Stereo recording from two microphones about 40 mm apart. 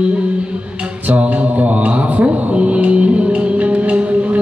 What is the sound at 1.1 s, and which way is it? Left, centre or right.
Mantra, right.